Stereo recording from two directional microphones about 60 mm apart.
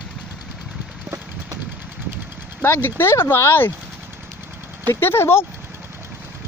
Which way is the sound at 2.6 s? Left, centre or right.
Left.